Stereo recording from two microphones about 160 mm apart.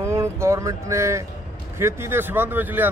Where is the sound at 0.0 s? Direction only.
15° right (ahead or behind).